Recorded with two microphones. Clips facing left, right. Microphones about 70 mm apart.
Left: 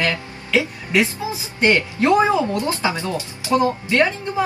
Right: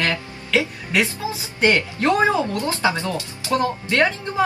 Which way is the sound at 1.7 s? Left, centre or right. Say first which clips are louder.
Left 5 dB; left.